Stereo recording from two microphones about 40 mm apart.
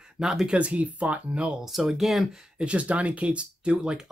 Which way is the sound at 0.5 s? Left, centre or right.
Right.